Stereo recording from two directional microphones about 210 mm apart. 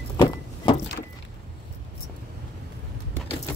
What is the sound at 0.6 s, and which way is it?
Vehicle, 25° left (ahead or behind).